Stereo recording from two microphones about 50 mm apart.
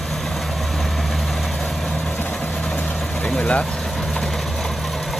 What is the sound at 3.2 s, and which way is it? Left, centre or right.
Speech, left.